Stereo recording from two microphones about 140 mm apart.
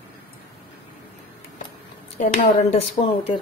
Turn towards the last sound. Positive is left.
turn(degrees=50)  # may be behind; listen again after turning